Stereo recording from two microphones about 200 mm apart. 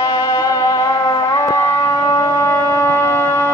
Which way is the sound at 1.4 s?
15° left (ahead or behind).